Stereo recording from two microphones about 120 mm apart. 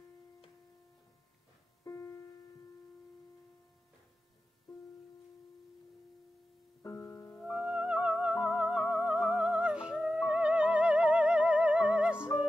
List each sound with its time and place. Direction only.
1.9 s music: 20° left (ahead or behind)
6.8 s music: 25° left (ahead or behind)
7.5 s music: 5° right (ahead or behind)